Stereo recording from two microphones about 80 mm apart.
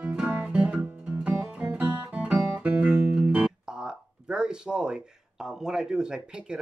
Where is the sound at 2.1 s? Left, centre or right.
Centre.